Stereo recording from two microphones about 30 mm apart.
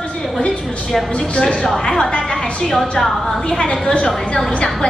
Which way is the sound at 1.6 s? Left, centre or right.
Centre.